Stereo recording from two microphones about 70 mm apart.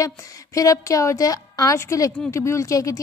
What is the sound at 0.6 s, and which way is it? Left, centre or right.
A woman's voice, left.